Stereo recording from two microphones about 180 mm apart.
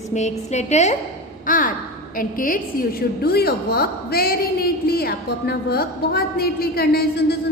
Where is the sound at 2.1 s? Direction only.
50° left (ahead or behind).